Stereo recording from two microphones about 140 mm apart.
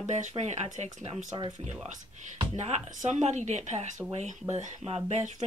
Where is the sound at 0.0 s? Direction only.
55° right (ahead or behind).